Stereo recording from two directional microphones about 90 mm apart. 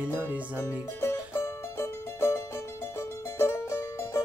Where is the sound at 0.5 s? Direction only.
30° left (ahead or behind).